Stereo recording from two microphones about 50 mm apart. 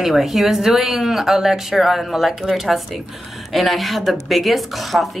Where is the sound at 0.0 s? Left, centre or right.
Centre.